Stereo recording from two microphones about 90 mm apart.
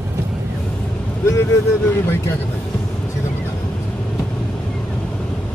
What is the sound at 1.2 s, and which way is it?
Speech, 30° left (ahead or behind).